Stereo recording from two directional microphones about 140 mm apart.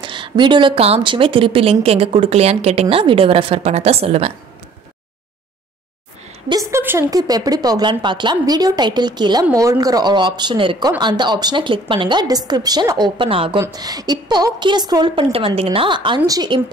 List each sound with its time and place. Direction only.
0.0 s speech: 35° right (ahead or behind)
6.5 s a woman's voice: 20° right (ahead or behind); by 13.6 s 40° right (ahead or behind)
13.6 s a woman's voice: 25° right (ahead or behind)
15.3 s speech: 45° right (ahead or behind)